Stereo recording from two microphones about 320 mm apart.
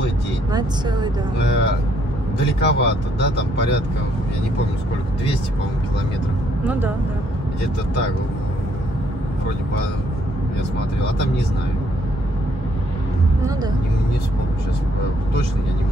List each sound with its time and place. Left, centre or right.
0.5 s speech: centre
1.4 s speech: left
6.6 s speech: centre